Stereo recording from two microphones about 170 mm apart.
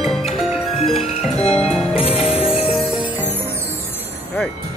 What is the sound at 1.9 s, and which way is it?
Music, 35° left (ahead or behind).